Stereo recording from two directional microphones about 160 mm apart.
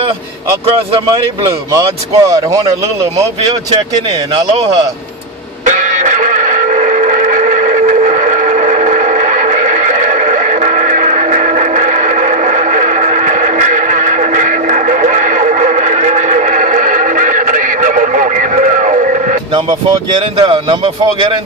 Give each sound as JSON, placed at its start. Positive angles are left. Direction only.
{"t": 1.7, "sound": "speech", "side_deg": -20}
{"t": 5.7, "sound": "music", "side_deg": -55}
{"t": 20.3, "sound": "speech", "side_deg": -35}